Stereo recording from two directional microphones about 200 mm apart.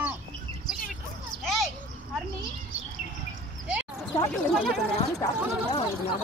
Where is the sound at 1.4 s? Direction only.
Centre (ahead or behind).